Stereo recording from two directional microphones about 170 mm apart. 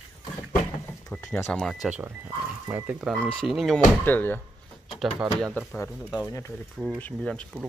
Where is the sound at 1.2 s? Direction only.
15° left (ahead or behind).